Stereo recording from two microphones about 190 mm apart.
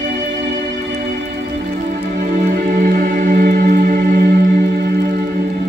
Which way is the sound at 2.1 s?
45° right (ahead or behind).